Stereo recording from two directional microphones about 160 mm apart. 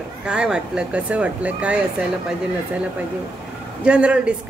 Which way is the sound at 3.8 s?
5° right (ahead or behind).